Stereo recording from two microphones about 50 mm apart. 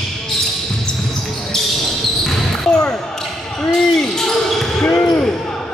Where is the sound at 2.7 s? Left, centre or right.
Centre.